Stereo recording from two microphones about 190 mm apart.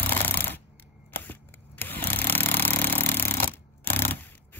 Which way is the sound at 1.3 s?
10° left (ahead or behind).